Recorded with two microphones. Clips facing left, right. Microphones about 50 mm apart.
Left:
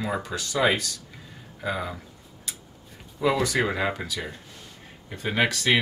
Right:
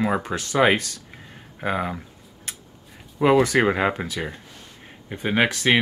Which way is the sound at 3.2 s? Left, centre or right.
Right.